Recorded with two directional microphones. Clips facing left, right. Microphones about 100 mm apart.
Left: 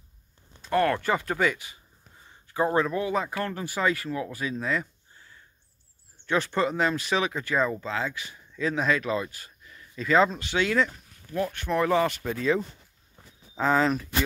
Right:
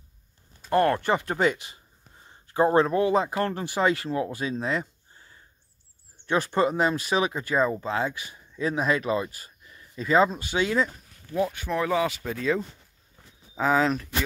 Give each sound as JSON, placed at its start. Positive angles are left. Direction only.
{"t": 0.7, "sound": "speech", "side_deg": -25}
{"t": 6.6, "sound": "speech", "side_deg": -15}
{"t": 9.7, "sound": "a sound", "side_deg": -20}
{"t": 10.1, "sound": "speech", "side_deg": -10}